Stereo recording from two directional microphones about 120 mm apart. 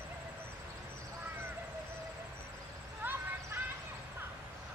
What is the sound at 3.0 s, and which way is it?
Vehicle, 15° right (ahead or behind).